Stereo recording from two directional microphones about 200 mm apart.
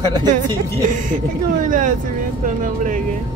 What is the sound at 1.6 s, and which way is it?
Speech, 40° right (ahead or behind).